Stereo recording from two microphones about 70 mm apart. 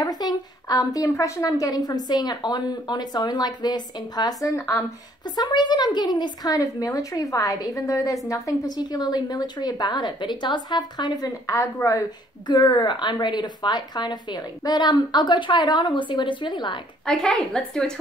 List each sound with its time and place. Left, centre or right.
0.0 s a sound: left
1.1 s a woman's voice: left
1.4 s a woman's voice: left
5.2 s a woman's voice: left
8.7 s a woman's voice: left
12.4 s a woman's voice: left
17.0 s a woman's voice: centre